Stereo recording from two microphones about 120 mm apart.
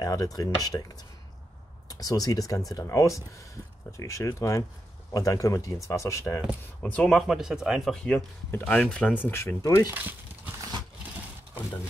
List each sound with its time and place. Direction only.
0.0 s speech: 30° left (ahead or behind)
6.8 s speech: 5° left (ahead or behind)
7.9 s speech: 5° left (ahead or behind); by 9.9 s 30° left (ahead or behind)